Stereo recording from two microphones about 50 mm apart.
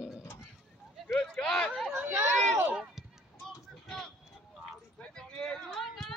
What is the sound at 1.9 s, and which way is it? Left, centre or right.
Chatter, right.